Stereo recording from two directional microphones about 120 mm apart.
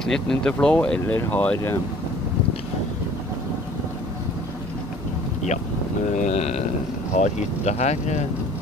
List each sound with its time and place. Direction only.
0.0 s speech: 5° left (ahead or behind)
6.1 s speech: 75° left (ahead or behind)